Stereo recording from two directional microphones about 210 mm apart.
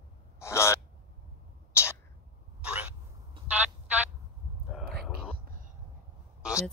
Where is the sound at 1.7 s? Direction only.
10° left (ahead or behind).